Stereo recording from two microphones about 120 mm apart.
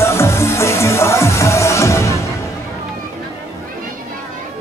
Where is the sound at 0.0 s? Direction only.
20° left (ahead or behind).